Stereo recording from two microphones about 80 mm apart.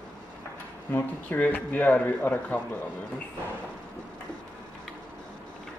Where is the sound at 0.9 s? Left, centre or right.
Left.